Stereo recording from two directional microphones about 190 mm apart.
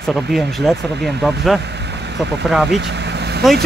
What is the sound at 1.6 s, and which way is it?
Vehicle, 65° right (ahead or behind).